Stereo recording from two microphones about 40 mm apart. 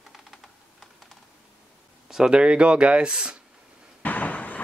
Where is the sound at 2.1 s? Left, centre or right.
Centre.